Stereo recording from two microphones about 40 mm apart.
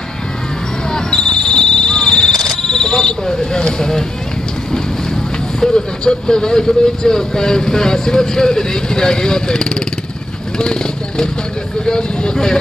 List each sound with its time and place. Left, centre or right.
0.9 s basketball bounce: centre
2.6 s speech: centre
5.6 s speech: centre